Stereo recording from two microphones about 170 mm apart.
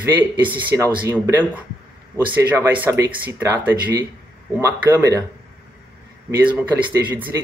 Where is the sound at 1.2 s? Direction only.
10° right (ahead or behind).